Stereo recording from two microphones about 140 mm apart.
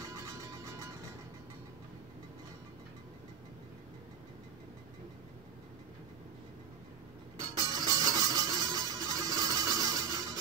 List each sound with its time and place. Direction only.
0.0 s music: 20° right (ahead or behind)
7.5 s music: 30° right (ahead or behind)